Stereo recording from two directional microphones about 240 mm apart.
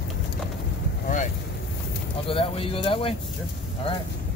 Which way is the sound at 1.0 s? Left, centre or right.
Left.